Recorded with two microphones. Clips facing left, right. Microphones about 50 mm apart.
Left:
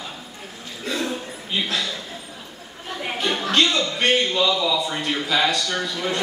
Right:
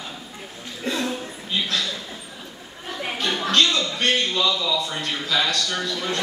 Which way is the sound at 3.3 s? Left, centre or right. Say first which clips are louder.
Even; centre.